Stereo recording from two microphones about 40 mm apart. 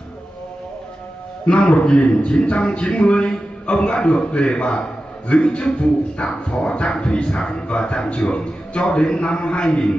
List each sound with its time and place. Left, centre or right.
1.4 s speech: left